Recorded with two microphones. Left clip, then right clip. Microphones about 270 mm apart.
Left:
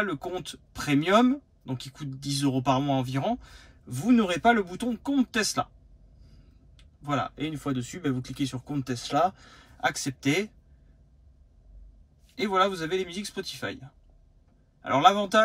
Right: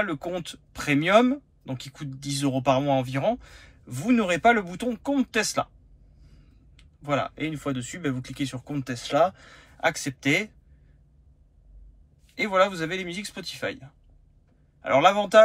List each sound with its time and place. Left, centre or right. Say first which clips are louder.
0.0 s speech: right 2 dB; centre
6.8 s speech: right 3 dB; centre
12.4 s speech: right 3 dB; centre